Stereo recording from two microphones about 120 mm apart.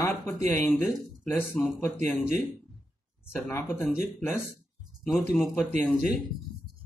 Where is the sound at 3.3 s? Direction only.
20° left (ahead or behind).